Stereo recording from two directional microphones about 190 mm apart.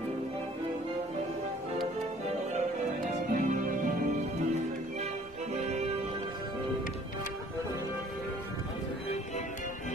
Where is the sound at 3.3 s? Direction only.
45° right (ahead or behind).